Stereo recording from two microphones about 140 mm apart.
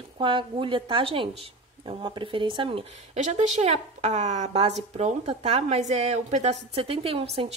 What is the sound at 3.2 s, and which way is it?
A woman's voice, 55° right (ahead or behind).